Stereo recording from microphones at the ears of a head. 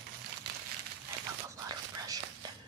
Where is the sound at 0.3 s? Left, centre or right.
Right.